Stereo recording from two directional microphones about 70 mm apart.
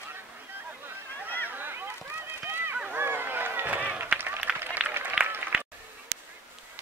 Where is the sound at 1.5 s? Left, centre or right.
Right.